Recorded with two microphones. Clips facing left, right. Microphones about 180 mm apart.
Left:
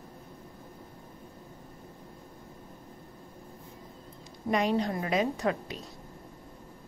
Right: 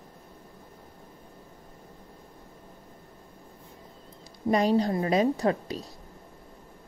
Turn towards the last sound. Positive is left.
turn(degrees=-35)  # may be behind; listen again after turning